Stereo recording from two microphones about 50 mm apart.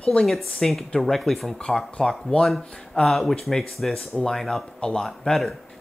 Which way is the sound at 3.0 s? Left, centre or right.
Centre.